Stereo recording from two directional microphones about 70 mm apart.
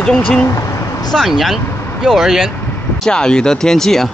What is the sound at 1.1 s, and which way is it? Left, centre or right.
Speech, centre.